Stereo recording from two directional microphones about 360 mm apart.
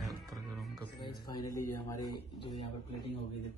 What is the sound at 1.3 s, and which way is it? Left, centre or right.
A man's voice, centre.